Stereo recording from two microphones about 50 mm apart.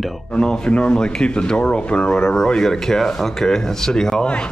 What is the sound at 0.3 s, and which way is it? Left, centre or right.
Speech, centre.